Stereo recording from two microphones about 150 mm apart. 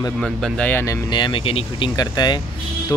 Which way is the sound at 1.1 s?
30° left (ahead or behind).